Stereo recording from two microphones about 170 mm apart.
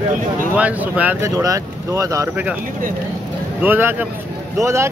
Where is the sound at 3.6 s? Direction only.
10° right (ahead or behind).